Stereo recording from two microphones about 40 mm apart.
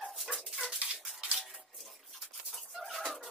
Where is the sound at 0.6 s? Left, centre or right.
Centre.